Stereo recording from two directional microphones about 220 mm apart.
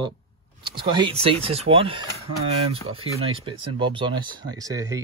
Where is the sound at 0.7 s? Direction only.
20° right (ahead or behind).